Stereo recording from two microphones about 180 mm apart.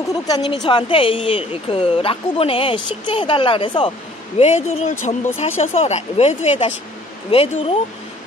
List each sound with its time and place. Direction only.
0.1 s speech: 25° left (ahead or behind)